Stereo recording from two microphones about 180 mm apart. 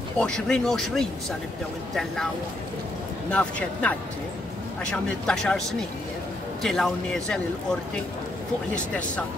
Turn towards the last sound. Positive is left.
turn(degrees=5)  # may be behind; listen again after turning